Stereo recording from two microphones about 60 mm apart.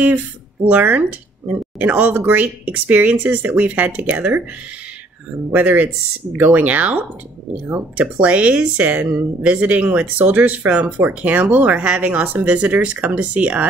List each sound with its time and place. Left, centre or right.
0.7 s speech: right
5.5 s speech: right